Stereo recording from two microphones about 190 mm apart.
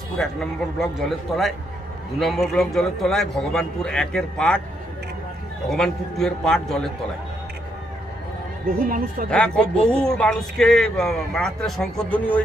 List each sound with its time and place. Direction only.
0.2 s a man's voice: centre (ahead or behind)
5.7 s a man's voice: centre (ahead or behind)
8.6 s speech: 50° right (ahead or behind)
9.3 s a man's voice: 5° left (ahead or behind)